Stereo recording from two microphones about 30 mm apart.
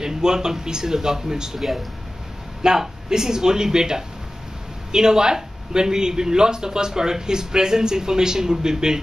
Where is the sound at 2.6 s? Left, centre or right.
Right.